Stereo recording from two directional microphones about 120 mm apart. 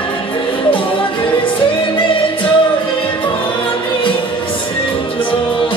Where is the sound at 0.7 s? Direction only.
45° left (ahead or behind).